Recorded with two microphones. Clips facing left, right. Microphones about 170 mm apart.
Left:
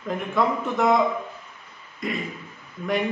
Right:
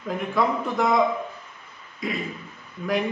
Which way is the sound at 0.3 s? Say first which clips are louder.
Even; centre (ahead or behind).